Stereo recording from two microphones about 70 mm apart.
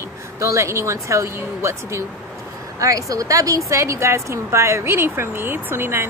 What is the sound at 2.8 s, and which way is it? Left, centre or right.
Speech, right.